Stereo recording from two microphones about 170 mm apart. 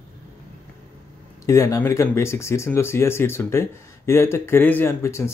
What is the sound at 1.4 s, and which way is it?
Speech, 15° left (ahead or behind).